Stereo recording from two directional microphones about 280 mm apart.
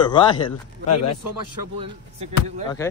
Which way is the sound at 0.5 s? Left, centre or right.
Left.